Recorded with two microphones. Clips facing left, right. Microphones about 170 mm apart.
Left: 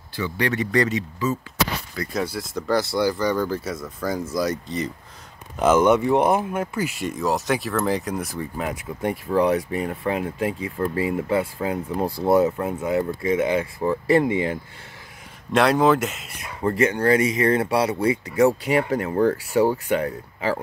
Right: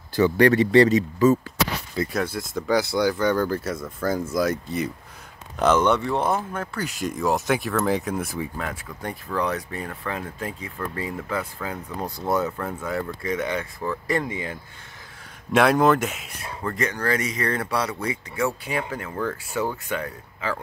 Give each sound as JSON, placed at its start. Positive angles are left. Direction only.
{"t": 0.1, "sound": "speech", "side_deg": -45}
{"t": 0.6, "sound": "speech", "side_deg": -30}
{"t": 2.1, "sound": "speech", "side_deg": 0}
{"t": 5.6, "sound": "speech", "side_deg": 5}
{"t": 9.3, "sound": "speech", "side_deg": 25}
{"t": 15.5, "sound": "speech", "side_deg": 0}
{"t": 16.6, "sound": "speech", "side_deg": 25}
{"t": 19.0, "sound": "speech", "side_deg": 40}